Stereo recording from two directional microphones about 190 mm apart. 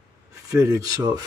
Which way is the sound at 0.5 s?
15° right (ahead or behind).